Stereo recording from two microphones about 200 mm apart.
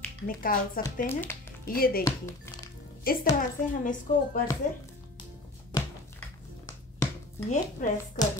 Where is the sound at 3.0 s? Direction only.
45° left (ahead or behind).